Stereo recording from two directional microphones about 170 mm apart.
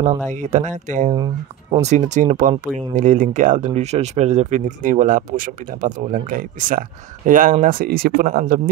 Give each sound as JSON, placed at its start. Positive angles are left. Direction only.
{"t": 0.0, "sound": "speech", "side_deg": -45}
{"t": 1.1, "sound": "speech", "side_deg": -25}
{"t": 1.8, "sound": "speech", "side_deg": -45}